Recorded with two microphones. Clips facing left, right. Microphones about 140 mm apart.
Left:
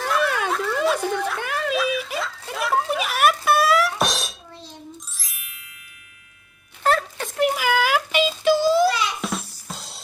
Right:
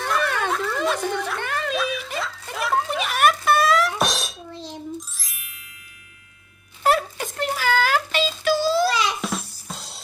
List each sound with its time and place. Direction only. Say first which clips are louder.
0.0 s a sound: left 1 dB; 5° left (ahead or behind)
5.1 s music: even; centre (ahead or behind)
6.8 s music: right 1 dB; 10° right (ahead or behind)
7.3 s child singing: left 2 dB; 10° left (ahead or behind)
9.2 s music: even; centre (ahead or behind)